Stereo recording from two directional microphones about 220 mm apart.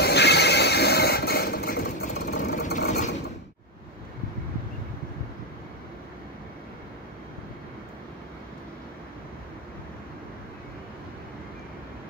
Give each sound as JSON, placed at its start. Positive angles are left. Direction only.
{"t": 0.0, "sound": "neigh", "side_deg": 50}